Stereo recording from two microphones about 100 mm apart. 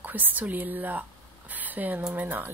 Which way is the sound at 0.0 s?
15° right (ahead or behind).